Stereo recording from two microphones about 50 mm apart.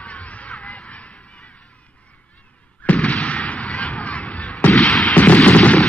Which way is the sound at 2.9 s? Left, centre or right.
Centre.